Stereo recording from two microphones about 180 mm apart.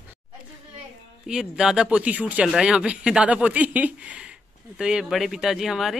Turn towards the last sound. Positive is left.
turn(degrees=0)  # may be behind; listen again after turning